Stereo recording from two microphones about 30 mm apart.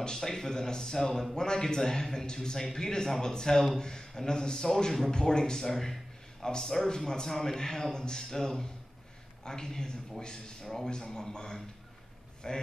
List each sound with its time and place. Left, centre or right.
0.0 s a man's voice: left